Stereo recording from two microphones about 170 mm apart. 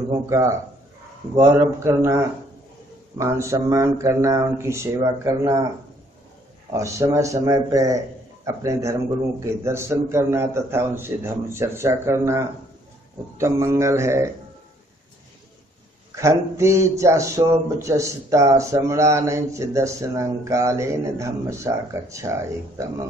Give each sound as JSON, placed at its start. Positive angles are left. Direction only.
{"t": 0.3, "sound": "speech", "side_deg": -20}
{"t": 6.7, "sound": "a man's voice", "side_deg": -20}
{"t": 16.2, "sound": "speech", "side_deg": -15}